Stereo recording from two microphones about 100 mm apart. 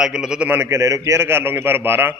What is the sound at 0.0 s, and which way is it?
Speech, 5° right (ahead or behind).